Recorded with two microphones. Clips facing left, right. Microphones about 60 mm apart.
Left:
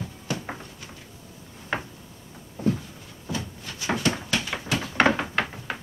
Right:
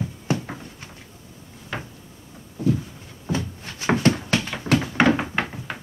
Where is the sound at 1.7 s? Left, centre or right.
Left.